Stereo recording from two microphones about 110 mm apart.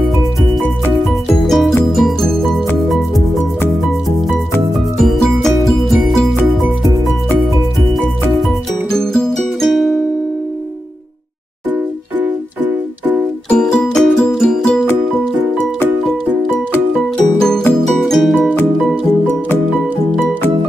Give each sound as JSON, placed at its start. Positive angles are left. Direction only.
{"t": 1.0, "sound": "music", "side_deg": 0}
{"t": 5.0, "sound": "music", "side_deg": 0}
{"t": 8.9, "sound": "music", "side_deg": 5}
{"t": 11.7, "sound": "music", "side_deg": -15}
{"t": 13.5, "sound": "music", "side_deg": 10}
{"t": 17.2, "sound": "music", "side_deg": 5}